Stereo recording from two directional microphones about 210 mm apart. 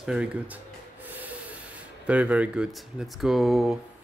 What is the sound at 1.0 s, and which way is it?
Rub, 10° right (ahead or behind).